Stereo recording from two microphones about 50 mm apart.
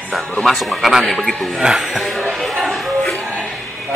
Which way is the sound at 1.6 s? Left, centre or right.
Centre.